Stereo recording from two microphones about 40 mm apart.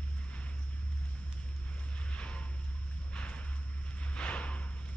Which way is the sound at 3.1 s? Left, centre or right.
Left.